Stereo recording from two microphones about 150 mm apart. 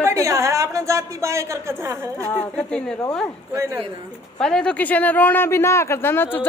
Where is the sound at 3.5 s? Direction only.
20° right (ahead or behind).